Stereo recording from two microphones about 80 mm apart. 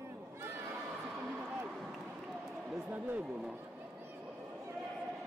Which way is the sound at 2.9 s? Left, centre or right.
Right.